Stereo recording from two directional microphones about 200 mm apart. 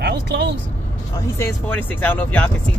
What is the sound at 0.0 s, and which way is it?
Vehicle, 55° right (ahead or behind).